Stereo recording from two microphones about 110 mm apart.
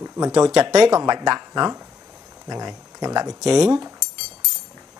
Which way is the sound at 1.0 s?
35° right (ahead or behind).